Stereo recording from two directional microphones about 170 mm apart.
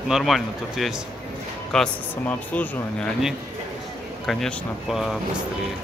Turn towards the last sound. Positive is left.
turn(degrees=0)  # may be behind; listen again after turning